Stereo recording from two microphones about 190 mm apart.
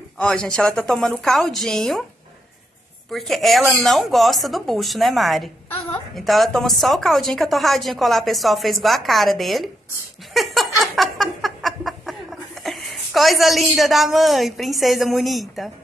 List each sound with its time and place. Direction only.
0.2 s a woman's voice: 5° left (ahead or behind)
3.1 s a woman's voice: centre (ahead or behind)
10.3 s a sound: centre (ahead or behind)